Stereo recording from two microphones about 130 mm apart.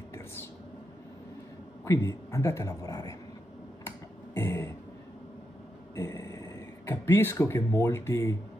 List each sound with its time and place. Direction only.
1.9 s a man's voice: 20° left (ahead or behind)
3.8 s finger snapping: 20° left (ahead or behind)
5.9 s a sound: 25° left (ahead or behind)